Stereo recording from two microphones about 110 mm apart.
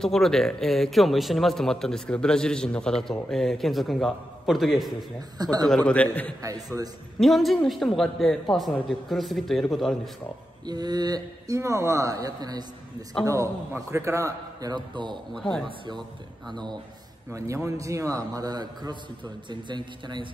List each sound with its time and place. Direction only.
0.0 s a man's voice: 5° left (ahead or behind)
5.4 s speech: 35° right (ahead or behind)
5.7 s a man's voice: 10° left (ahead or behind)
6.4 s a man's voice: 30° right (ahead or behind)
7.2 s a man's voice: centre (ahead or behind)
10.7 s a man's voice: 40° right (ahead or behind)
15.3 s a man's voice: 5° left (ahead or behind)
17.6 s a man's voice: 30° right (ahead or behind)